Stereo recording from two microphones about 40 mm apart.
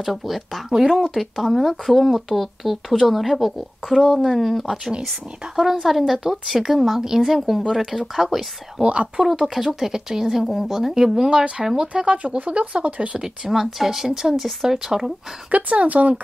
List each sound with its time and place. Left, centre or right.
0.0 s speech: centre
1.1 s speech: centre
8.8 s speech: right
9.4 s speech: centre; by 13.2 s right
13.5 s speech: centre
15.5 s speech: right